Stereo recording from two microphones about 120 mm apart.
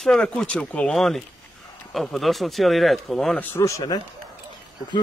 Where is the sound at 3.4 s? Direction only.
20° left (ahead or behind).